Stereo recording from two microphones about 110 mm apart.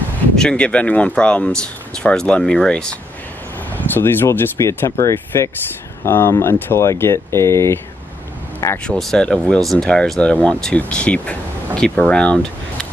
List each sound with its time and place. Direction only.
0.4 s speech: 10° left (ahead or behind); by 7.8 s 25° left (ahead or behind)
8.8 s speech: 5° left (ahead or behind)